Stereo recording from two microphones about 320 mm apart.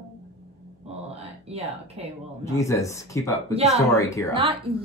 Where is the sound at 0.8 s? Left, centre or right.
Centre.